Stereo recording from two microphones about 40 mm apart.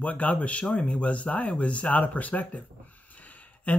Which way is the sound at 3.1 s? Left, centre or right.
Left.